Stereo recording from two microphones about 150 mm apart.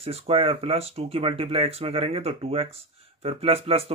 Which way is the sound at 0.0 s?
40° right (ahead or behind).